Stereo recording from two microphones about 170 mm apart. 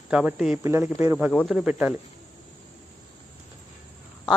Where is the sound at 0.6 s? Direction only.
15° right (ahead or behind).